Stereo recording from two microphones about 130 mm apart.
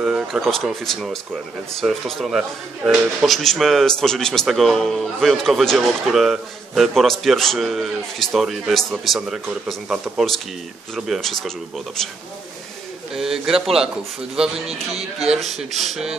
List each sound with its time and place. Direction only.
0.0 s speech: 5° right (ahead or behind)
13.1 s speech: 5° right (ahead or behind)
14.7 s speech: 50° right (ahead or behind)
15.2 s speech: centre (ahead or behind)